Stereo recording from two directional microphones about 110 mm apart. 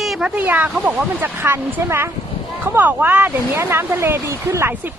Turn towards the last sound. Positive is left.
turn(degrees=-25)  # may be behind; listen again after turning